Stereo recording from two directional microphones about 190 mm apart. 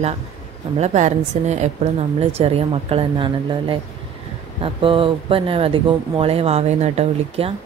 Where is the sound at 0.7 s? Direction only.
35° right (ahead or behind).